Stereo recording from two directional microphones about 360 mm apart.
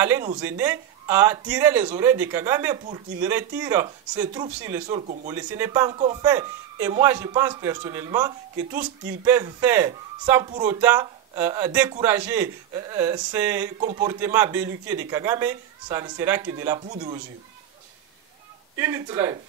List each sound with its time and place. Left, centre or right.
0.0 s speech: centre
5.3 s speech: centre
13.7 s speech: centre
18.8 s speech: centre